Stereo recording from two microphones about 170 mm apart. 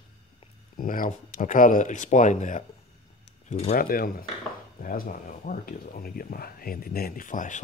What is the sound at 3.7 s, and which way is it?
Speech, 60° left (ahead or behind).